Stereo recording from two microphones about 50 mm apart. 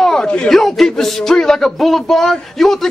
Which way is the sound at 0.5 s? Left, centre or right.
Centre.